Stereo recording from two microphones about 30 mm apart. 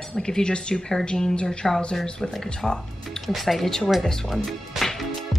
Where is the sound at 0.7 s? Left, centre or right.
Left.